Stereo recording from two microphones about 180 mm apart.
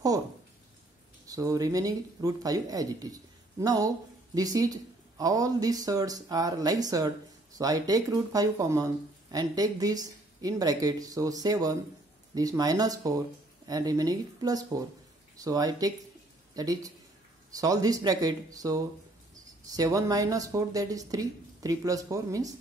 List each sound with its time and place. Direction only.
1.2 s speech: 20° right (ahead or behind)